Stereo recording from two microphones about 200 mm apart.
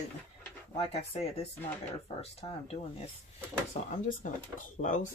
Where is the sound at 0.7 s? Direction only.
30° left (ahead or behind).